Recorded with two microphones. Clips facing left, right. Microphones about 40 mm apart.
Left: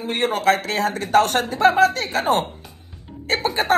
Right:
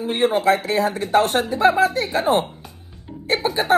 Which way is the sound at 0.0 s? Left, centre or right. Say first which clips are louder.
Right 2 dB; left.